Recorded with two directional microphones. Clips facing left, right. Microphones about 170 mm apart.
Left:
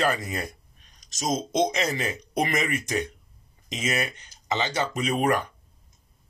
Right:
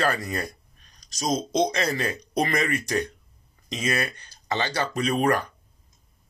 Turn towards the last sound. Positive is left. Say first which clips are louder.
# right 1 dB
turn(degrees=20)  # may be behind; listen again after turning